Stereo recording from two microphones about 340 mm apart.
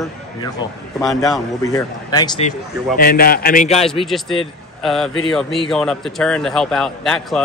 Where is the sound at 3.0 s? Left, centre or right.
Left.